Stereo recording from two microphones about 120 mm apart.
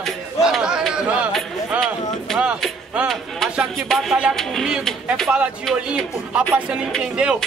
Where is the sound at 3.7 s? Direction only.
Centre (ahead or behind).